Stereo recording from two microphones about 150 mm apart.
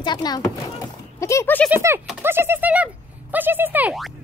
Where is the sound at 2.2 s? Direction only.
15° right (ahead or behind).